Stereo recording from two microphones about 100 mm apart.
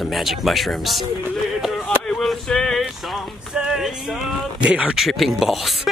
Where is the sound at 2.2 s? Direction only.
5° left (ahead or behind).